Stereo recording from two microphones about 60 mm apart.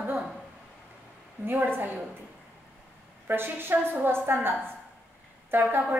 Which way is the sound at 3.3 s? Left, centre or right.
Right.